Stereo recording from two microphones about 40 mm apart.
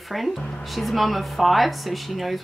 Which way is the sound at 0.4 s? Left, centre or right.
Centre.